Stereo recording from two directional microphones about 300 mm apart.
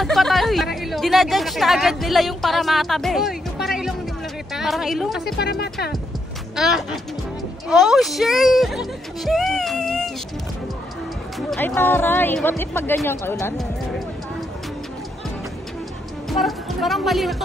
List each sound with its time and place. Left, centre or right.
0.0 s a woman's voice: centre
5.2 s speech: left
6.5 s speech: centre
11.3 s speech: centre
16.3 s speech: centre